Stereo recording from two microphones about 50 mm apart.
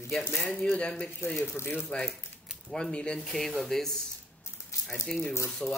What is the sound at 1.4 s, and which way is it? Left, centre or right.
Speech, left.